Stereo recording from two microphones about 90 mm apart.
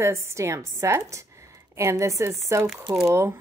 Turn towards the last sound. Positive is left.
turn(degrees=-35)  # may be behind; listen again after turning